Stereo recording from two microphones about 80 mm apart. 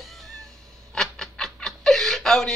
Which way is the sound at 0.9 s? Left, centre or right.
Centre.